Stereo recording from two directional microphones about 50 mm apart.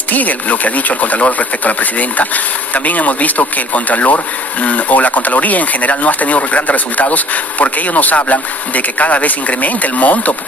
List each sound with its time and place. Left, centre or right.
0.1 s speech: left